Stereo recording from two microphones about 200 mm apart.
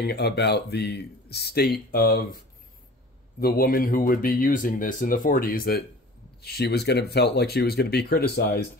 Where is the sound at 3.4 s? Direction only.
45° left (ahead or behind).